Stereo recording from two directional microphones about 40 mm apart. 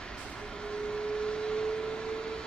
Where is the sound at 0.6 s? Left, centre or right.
Centre.